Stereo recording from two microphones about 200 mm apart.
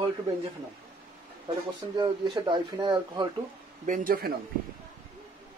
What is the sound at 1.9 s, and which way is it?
Speech, 25° right (ahead or behind).